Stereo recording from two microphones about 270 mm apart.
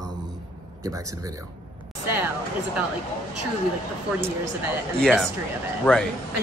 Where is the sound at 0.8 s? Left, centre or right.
Centre.